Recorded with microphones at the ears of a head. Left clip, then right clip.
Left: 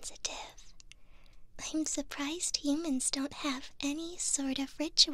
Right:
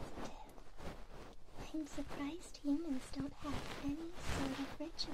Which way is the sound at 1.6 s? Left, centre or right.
Left.